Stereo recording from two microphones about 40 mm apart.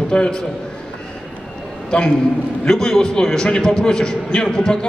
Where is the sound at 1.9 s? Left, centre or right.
Left.